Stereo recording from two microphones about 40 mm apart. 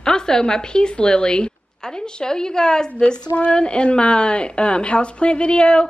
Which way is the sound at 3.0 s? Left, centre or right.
Left.